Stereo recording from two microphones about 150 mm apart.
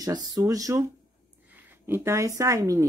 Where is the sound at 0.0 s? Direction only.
30° right (ahead or behind).